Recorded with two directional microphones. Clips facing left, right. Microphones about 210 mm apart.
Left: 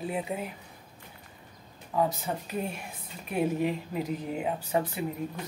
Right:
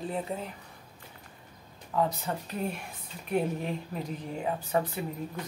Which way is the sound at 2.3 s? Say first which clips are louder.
Left 1 dB; 15° left (ahead or behind).